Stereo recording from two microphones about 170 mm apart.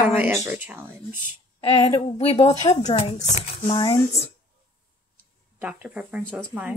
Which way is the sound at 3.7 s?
25° left (ahead or behind).